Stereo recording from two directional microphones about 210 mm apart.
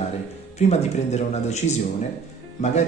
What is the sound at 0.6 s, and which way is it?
Speech, 30° left (ahead or behind).